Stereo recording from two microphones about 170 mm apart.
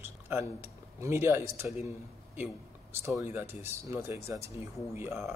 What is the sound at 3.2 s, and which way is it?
A man's voice, 10° right (ahead or behind).